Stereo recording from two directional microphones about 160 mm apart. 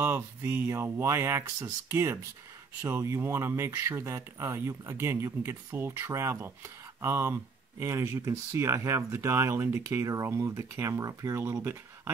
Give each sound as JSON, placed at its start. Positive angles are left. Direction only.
{"t": 0.0, "sound": "speech", "side_deg": -15}